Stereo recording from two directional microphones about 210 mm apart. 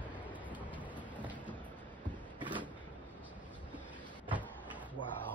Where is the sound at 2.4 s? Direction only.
20° right (ahead or behind).